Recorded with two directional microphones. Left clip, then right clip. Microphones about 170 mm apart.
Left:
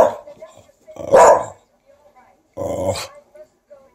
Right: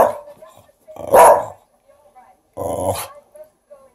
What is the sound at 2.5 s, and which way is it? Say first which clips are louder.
Dog: even; 10° right (ahead or behind).